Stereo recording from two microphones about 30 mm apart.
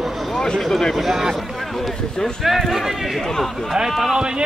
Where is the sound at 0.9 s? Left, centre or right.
Centre.